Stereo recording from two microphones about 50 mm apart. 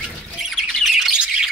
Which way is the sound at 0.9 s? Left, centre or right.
Centre.